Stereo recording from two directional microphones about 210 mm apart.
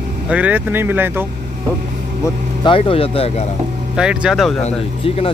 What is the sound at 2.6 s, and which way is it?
Speech, 25° left (ahead or behind).